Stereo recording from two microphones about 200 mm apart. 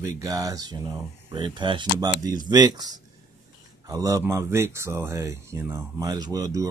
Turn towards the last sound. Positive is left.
turn(degrees=-15)  # may be behind; listen again after turning